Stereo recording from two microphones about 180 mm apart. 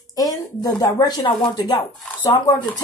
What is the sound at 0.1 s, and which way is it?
Speech, 20° left (ahead or behind).